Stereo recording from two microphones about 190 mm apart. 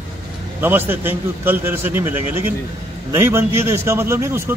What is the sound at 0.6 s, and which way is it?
A man's voice, 10° right (ahead or behind).